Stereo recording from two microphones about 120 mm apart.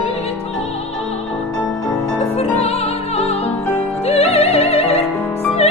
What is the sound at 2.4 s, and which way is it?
Music, 55° left (ahead or behind).